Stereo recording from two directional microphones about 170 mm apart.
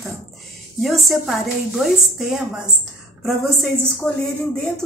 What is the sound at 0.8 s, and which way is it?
A woman's voice, centre (ahead or behind).